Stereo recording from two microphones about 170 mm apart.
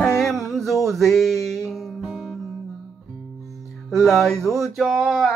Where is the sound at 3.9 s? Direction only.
5° left (ahead or behind).